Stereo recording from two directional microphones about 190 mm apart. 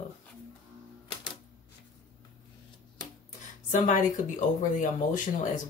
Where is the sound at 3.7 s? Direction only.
45° left (ahead or behind).